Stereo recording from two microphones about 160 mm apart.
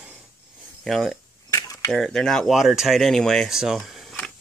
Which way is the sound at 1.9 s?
5° left (ahead or behind).